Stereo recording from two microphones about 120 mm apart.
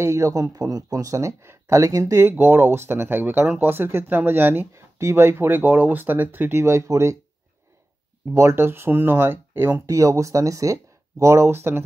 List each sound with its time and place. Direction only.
0.0 s speech: 25° right (ahead or behind)
8.3 s speech: 20° right (ahead or behind)